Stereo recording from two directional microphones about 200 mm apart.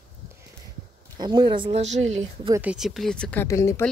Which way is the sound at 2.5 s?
5° right (ahead or behind).